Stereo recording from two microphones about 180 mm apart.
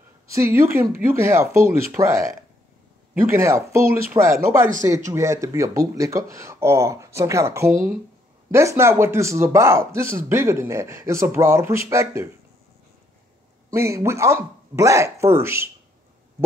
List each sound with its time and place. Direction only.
0.3 s speech: 15° right (ahead or behind)
13.7 s speech: 15° right (ahead or behind)